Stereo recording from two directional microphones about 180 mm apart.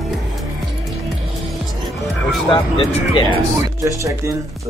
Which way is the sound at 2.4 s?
30° left (ahead or behind).